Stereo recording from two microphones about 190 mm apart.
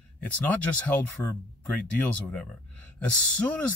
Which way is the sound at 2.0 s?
5° left (ahead or behind).